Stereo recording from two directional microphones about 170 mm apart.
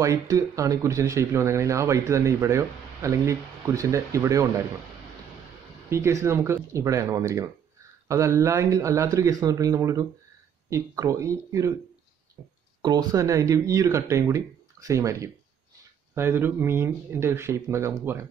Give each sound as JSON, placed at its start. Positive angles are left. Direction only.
{"t": 0.0, "sound": "speech", "side_deg": -20}
{"t": 5.9, "sound": "speech", "side_deg": -15}
{"t": 12.8, "sound": "speech", "side_deg": -20}